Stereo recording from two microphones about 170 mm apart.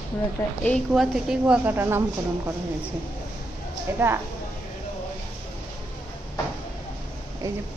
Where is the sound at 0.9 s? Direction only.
5° right (ahead or behind).